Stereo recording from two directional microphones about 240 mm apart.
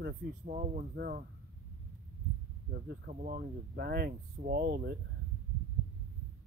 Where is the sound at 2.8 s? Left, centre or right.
Right.